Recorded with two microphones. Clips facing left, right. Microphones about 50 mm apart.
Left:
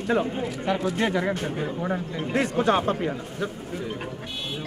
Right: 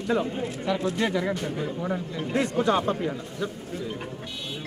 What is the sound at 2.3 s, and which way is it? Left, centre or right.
Speech, left.